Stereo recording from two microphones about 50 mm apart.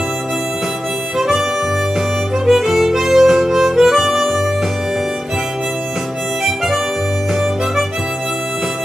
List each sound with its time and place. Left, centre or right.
1.1 s harmonica: centre
2.4 s harmonica: centre